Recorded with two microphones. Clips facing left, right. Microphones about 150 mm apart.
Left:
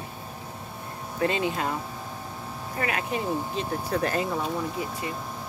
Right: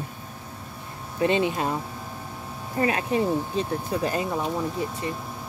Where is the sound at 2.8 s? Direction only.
30° right (ahead or behind).